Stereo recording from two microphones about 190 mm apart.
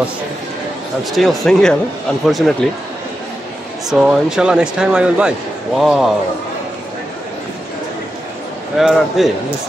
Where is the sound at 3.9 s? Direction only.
5° right (ahead or behind).